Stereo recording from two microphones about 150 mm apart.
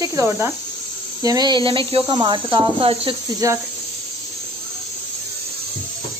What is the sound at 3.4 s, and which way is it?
Speech, 20° right (ahead or behind).